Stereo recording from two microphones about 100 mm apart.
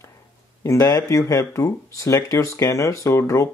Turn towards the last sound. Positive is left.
turn(degrees=30)  # may be behind; listen again after turning